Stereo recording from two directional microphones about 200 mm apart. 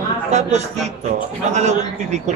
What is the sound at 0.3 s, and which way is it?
A man's voice, 35° right (ahead or behind).